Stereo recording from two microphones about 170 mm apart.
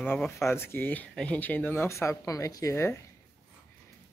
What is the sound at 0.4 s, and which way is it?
Speech, 15° left (ahead or behind).